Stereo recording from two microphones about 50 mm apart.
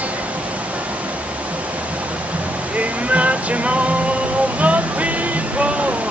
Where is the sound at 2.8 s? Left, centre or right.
Right.